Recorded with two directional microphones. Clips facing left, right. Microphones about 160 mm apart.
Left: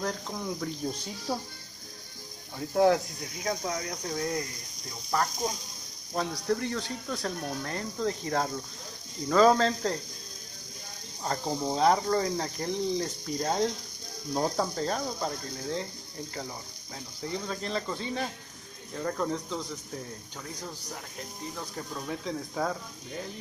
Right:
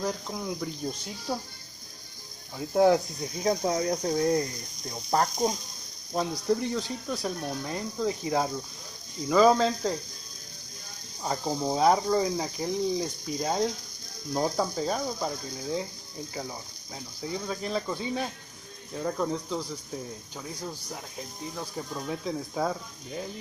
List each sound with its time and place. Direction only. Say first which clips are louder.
0.0 s speech: right 1 dB; 5° right (ahead or behind)
0.8 s speech: even; 5° left (ahead or behind)
2.7 s speech: right 2 dB; 20° right (ahead or behind)
6.1 s speech: right 2 dB; 15° right (ahead or behind)
11.2 s speech: right 1 dB; 10° right (ahead or behind)
17.2 s speech: right 1 dB; 10° right (ahead or behind)
21.5 s speech: right 4 dB; 5° right (ahead or behind)